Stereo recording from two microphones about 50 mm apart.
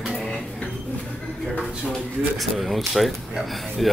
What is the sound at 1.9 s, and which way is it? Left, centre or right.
Speech, centre.